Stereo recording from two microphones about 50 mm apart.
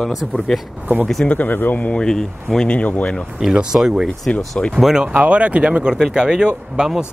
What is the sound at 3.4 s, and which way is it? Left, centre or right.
Speech, centre.